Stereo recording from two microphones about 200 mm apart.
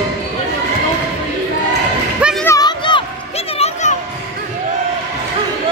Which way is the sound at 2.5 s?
20° left (ahead or behind).